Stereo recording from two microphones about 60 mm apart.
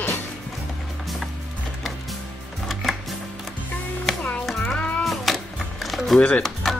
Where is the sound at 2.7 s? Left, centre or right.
Centre.